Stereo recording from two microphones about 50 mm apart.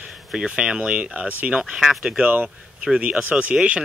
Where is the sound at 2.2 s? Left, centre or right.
Right.